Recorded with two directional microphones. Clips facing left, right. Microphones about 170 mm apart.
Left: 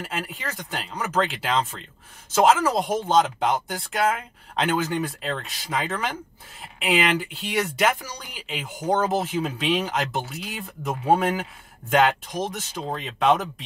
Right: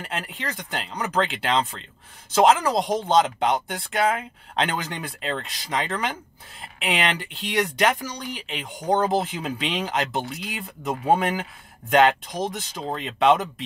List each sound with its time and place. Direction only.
0.0 s speech: centre (ahead or behind)